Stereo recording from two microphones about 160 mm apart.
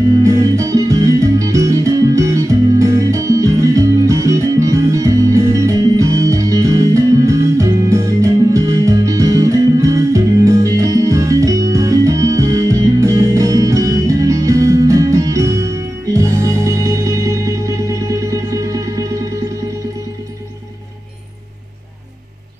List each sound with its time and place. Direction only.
0.1 s music: 20° right (ahead or behind)